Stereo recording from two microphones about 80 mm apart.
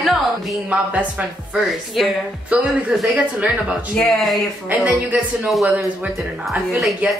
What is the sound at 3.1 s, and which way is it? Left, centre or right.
Speech, centre.